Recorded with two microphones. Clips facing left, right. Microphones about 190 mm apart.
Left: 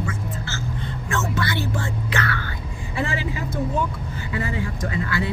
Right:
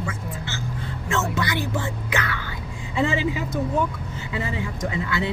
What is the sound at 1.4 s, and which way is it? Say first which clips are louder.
Speech: even; 15° right (ahead or behind).